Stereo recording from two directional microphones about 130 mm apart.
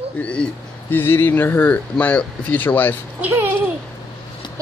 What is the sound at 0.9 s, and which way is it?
A man's voice, 15° left (ahead or behind).